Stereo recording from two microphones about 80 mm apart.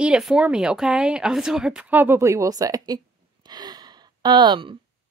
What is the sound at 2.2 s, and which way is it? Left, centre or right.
Speech, right.